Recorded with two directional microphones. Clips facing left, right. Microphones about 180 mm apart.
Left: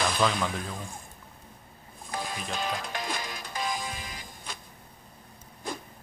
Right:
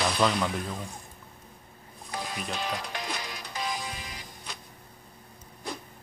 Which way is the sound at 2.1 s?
50° left (ahead or behind).